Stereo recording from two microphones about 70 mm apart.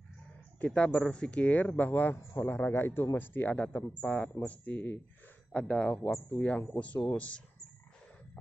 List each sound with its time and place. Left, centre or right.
0.6 s speech: centre